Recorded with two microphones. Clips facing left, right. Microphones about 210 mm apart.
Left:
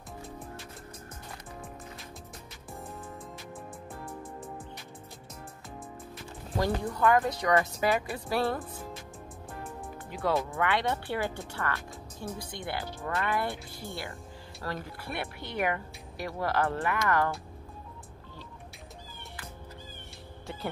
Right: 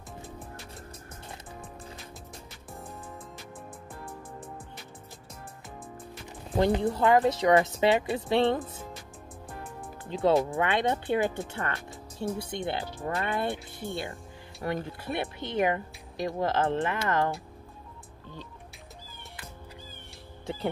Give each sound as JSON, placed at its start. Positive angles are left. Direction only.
{"t": 6.6, "sound": "speech", "side_deg": -25}
{"t": 10.0, "sound": "speech", "side_deg": -25}